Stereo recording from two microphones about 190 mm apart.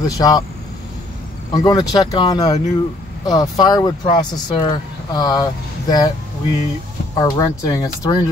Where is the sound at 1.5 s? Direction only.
20° left (ahead or behind).